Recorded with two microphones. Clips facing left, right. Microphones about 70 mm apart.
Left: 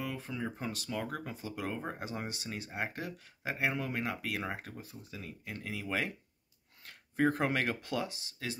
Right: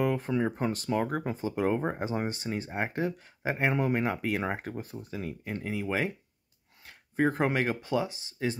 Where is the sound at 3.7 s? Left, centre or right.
Right.